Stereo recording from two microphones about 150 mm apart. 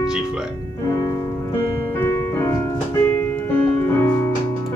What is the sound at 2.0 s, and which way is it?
Music, 15° left (ahead or behind).